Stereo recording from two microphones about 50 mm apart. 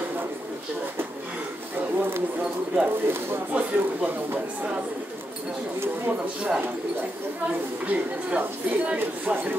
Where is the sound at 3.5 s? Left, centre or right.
Right.